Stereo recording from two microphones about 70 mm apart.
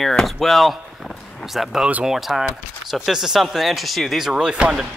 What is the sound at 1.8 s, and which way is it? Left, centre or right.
Speech, centre.